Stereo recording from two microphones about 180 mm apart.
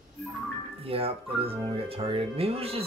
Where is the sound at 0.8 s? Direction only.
30° right (ahead or behind).